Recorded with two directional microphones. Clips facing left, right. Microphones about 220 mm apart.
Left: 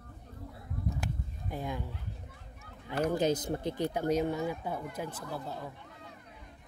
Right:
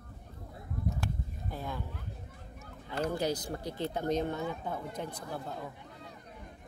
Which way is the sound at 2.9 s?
15° left (ahead or behind).